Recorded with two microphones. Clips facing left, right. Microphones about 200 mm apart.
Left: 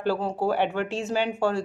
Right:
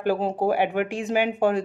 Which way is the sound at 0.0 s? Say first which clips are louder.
Right 2 dB; 15° right (ahead or behind).